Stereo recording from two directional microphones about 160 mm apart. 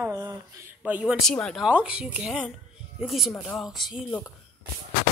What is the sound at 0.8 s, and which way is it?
Speech, 10° right (ahead or behind).